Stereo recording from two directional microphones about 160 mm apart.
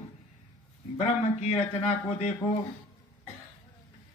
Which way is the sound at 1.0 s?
40° left (ahead or behind).